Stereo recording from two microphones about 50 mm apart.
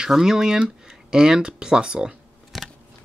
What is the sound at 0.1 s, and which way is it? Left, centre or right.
Speech, centre.